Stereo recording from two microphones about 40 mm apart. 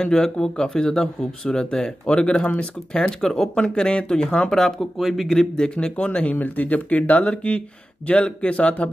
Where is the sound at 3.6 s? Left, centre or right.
Left.